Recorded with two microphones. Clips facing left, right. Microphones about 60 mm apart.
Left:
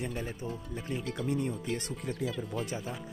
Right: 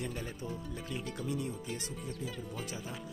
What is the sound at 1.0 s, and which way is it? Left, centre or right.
Speech, left.